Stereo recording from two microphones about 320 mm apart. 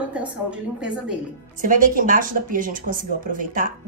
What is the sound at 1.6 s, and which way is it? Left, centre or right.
Speech, right.